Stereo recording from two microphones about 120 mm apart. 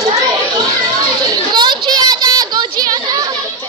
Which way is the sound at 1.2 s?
40° right (ahead or behind).